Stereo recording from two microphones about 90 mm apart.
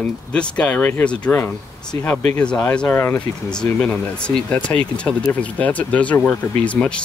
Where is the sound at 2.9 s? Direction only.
25° left (ahead or behind).